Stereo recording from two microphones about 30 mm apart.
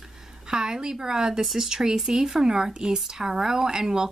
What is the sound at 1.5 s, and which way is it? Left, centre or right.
Speech, right.